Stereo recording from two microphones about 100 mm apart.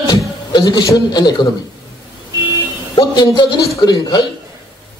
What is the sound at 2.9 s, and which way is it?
A man's voice, 45° left (ahead or behind).